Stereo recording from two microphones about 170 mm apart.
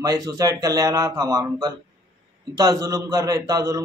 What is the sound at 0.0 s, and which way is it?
A man's voice, 20° right (ahead or behind).